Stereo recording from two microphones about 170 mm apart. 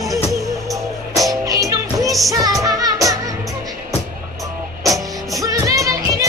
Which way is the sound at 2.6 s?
20° right (ahead or behind).